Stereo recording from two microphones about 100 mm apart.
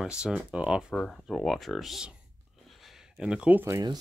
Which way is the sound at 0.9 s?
5° left (ahead or behind).